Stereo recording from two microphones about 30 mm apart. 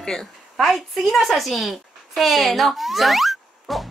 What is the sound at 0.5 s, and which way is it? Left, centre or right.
A woman's voice, centre.